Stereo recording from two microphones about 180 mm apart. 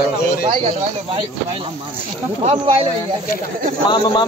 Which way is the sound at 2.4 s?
25° right (ahead or behind).